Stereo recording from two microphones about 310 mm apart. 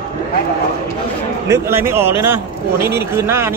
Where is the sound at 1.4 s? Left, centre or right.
Centre.